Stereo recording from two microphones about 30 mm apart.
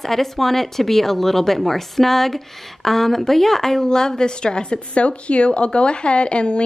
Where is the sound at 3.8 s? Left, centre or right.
Left.